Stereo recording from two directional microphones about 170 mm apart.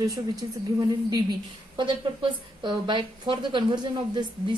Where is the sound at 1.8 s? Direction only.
30° right (ahead or behind).